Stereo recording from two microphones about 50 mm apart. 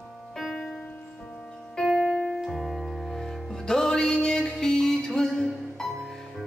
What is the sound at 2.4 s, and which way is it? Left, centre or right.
Music, centre.